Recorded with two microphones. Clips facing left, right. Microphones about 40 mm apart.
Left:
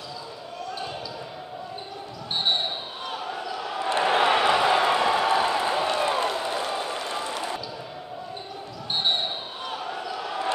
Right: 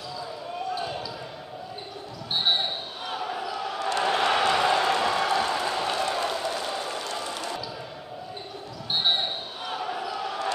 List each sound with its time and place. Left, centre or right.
2.3 s basketball bounce: centre
3.8 s a sound: centre
7.1 s basketball bounce: centre
8.9 s basketball bounce: centre